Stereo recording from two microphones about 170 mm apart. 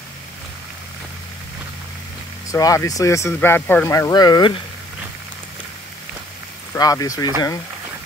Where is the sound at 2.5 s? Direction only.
20° left (ahead or behind).